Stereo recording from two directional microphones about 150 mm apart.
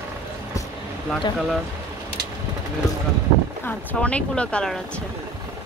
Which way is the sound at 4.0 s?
10° left (ahead or behind).